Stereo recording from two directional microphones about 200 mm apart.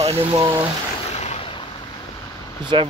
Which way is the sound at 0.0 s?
30° right (ahead or behind).